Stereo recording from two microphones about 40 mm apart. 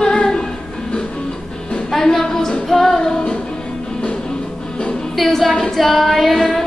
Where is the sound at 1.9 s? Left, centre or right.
Centre.